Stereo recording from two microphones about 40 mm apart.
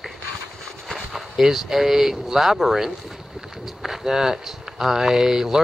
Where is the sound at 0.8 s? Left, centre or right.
Centre.